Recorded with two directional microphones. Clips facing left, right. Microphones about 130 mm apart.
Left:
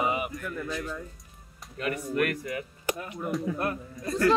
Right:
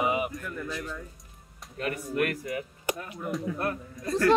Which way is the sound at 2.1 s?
30° right (ahead or behind).